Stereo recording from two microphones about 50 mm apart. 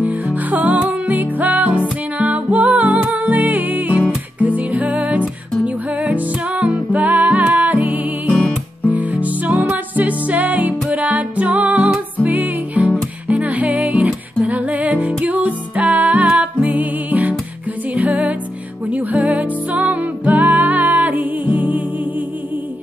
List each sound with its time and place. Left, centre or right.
0.5 s music: right